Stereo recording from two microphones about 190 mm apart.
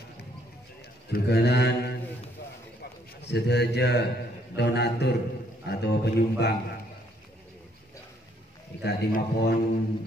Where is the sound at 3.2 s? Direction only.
60° left (ahead or behind).